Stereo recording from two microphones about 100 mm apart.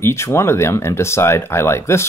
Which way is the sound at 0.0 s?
25° left (ahead or behind).